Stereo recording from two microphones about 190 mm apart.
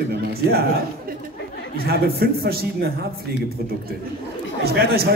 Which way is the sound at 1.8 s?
55° right (ahead or behind).